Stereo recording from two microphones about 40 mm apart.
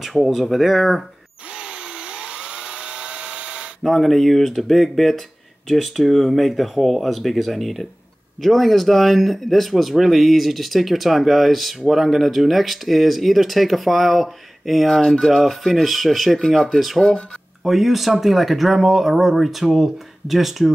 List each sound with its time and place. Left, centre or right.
0.0 s speech: centre
1.5 s tools: right
3.8 s speech: centre